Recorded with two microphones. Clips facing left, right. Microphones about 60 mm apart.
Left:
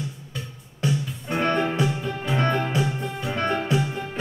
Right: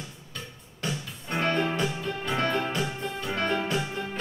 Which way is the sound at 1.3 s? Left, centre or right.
Centre.